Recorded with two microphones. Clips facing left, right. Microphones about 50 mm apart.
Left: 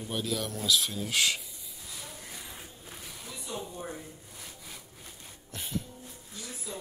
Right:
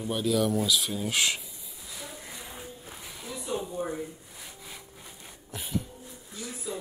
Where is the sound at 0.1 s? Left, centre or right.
Centre.